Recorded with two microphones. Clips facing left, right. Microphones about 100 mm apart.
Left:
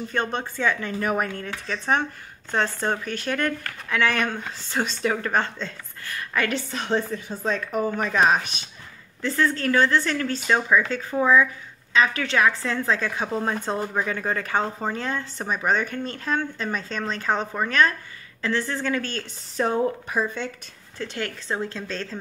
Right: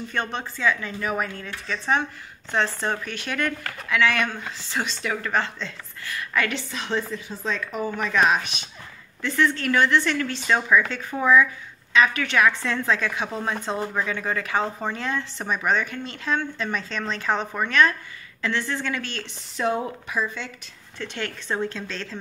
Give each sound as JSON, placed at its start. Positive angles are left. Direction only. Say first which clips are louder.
{"t": 0.1, "sound": "a woman's voice", "louder": "left 2 dB", "side_deg": 40}
{"t": 10.4, "sound": "speech", "louder": "right 1 dB", "side_deg": 30}